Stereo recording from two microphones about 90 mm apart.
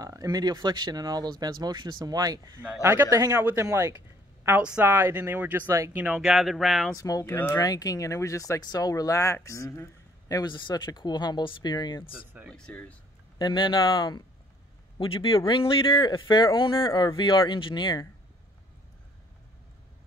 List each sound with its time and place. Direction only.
0.0 s speech: 40° right (ahead or behind)
2.8 s a man's voice: 30° right (ahead or behind)
4.6 s speech: 15° right (ahead or behind)
6.2 s speech: 5° right (ahead or behind)
7.0 s speech: 40° left (ahead or behind)
10.4 s speech: 55° left (ahead or behind)
12.4 s speech: 5° left (ahead or behind)
13.4 s speech: 60° left (ahead or behind)
15.0 s speech: 80° left; by 18.0 s 60° left (ahead or behind)